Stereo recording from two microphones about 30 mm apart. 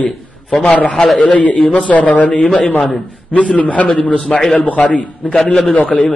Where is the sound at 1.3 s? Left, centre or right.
Left.